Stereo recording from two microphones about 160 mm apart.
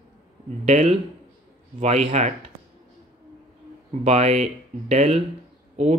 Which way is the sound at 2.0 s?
45° right (ahead or behind).